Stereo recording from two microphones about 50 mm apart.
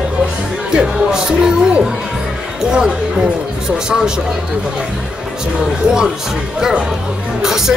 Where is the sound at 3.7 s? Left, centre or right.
Centre.